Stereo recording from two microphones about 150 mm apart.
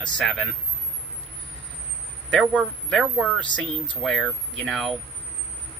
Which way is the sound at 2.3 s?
5° left (ahead or behind).